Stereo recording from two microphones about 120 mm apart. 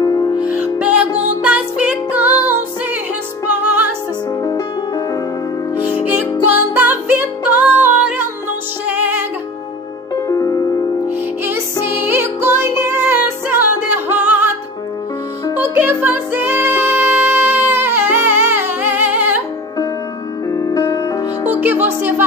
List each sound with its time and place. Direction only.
0.0 s music: 30° left (ahead or behind)
0.4 s music: 10° right (ahead or behind)
4.4 s music: 30° left (ahead or behind)
5.8 s music: 15° right (ahead or behind)
10.2 s music: 25° left (ahead or behind)
11.4 s music: 20° right (ahead or behind)
15.6 s music: 15° right (ahead or behind)
20.5 s music: 25° left (ahead or behind)
21.5 s music: 15° right (ahead or behind)